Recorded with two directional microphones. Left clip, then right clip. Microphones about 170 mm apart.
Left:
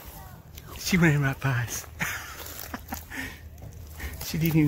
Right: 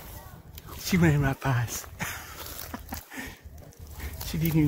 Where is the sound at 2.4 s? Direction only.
Centre (ahead or behind).